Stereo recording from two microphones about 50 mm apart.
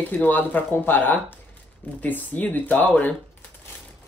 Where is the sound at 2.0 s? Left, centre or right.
Left.